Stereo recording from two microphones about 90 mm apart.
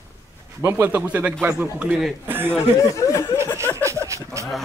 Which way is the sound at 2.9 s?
35° left (ahead or behind).